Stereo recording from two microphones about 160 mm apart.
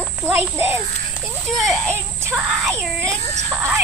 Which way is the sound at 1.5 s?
Centre (ahead or behind).